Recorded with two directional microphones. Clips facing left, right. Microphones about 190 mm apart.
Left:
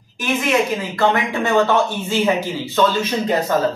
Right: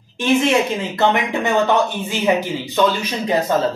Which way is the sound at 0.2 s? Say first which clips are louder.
Right 3 dB; 25° right (ahead or behind).